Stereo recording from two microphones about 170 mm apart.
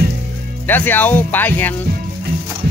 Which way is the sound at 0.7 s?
10° left (ahead or behind).